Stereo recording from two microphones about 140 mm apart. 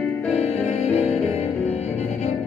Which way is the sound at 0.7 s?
55° left (ahead or behind).